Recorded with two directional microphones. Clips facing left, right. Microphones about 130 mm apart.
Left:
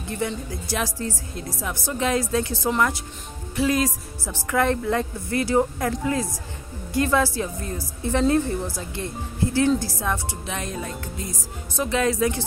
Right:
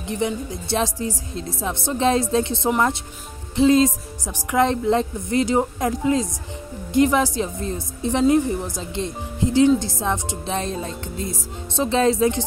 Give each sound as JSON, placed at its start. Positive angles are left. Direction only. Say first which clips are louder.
{"t": 0.0, "sound": "a woman's voice", "louder": "right 4 dB", "side_deg": -20}